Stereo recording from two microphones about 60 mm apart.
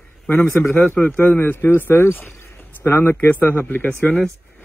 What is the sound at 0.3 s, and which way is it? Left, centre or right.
A man's voice, left.